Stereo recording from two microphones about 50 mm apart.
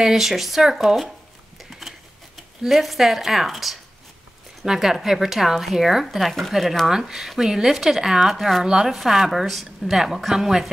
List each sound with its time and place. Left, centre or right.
0.0 s speech: centre
1.6 s a sound: centre
2.6 s speech: centre